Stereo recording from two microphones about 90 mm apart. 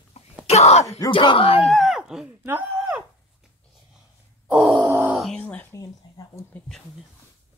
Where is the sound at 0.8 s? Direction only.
40° left (ahead or behind).